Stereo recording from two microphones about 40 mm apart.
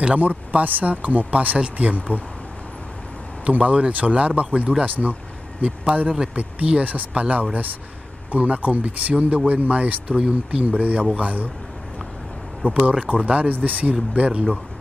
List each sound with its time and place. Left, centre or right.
0.2 s speech: right
3.4 s speech: right
4.8 s speech: right
5.6 s speech: right
12.9 s speech: right
14.1 s speech: right